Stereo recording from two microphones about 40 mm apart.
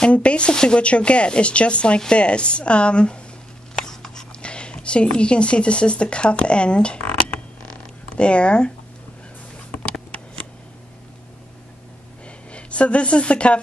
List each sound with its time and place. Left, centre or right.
0.0 s speech: left
3.7 s writing: centre
4.4 s speech: left
8.2 s speech: left
9.8 s a sound: left
12.4 s a woman's voice: left